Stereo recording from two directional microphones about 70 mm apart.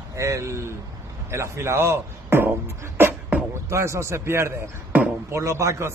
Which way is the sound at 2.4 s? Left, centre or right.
Right.